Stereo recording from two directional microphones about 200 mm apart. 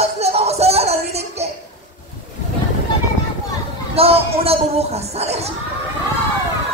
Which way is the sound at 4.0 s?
30° right (ahead or behind).